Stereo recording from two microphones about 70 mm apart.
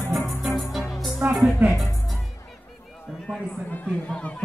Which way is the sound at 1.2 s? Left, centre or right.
Centre.